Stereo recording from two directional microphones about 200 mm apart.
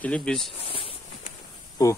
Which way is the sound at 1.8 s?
15° left (ahead or behind).